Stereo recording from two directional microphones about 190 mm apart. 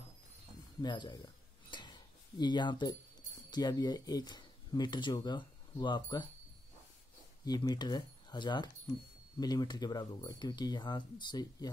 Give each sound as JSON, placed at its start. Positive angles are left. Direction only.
{"t": 0.7, "sound": "cutlery", "side_deg": 25}
{"t": 3.4, "sound": "speech", "side_deg": 20}
{"t": 7.4, "sound": "speech", "side_deg": 20}